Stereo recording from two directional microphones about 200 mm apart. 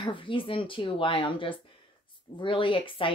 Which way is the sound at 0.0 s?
25° left (ahead or behind).